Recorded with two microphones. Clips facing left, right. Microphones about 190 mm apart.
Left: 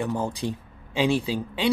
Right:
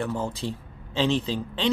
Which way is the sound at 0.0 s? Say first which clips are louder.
Left 2 dB; 15° left (ahead or behind).